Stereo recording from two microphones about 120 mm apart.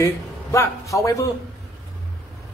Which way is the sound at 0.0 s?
25° left (ahead or behind).